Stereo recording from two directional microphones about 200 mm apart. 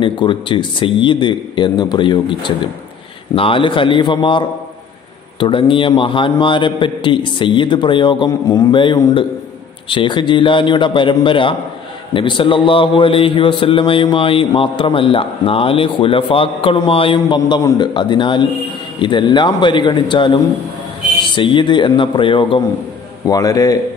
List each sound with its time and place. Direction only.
0.0 s a man's voice: 25° left (ahead or behind)
21.4 s a man's voice: 25° left (ahead or behind)